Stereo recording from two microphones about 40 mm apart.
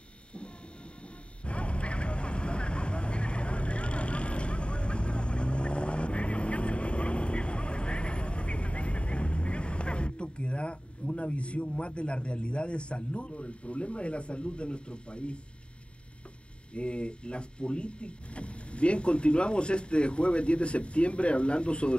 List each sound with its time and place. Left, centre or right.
1.4 s vehicle: left
16.7 s speech: left